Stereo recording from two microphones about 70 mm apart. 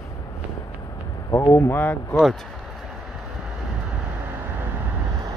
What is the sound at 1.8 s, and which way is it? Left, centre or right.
Speech, left.